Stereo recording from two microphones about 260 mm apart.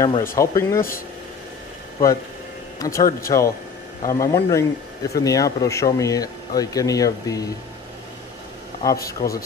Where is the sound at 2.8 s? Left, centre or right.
Centre.